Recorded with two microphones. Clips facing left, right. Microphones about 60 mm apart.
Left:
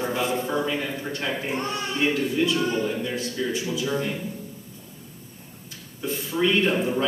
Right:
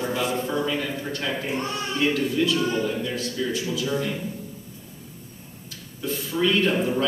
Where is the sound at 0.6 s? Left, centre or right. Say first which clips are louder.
Even; centre.